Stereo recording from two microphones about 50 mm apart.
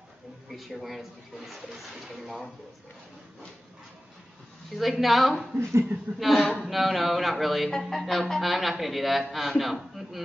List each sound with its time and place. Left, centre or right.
0.5 s speech: centre
4.7 s speech: centre
5.6 s a woman's voice: right
6.1 s speech: centre